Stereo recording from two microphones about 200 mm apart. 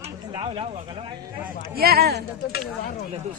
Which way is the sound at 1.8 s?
50° right (ahead or behind).